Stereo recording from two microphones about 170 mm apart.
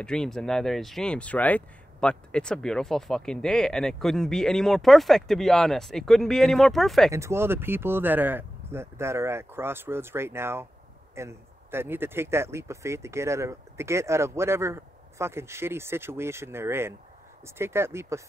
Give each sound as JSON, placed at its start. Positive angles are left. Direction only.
{"t": 0.0, "sound": "speech", "side_deg": 5}
{"t": 7.1, "sound": "speech", "side_deg": -15}